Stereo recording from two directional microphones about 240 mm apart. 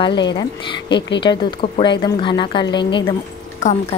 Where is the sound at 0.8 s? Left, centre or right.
Left.